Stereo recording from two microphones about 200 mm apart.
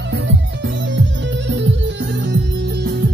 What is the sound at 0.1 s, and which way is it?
Music, 65° right (ahead or behind).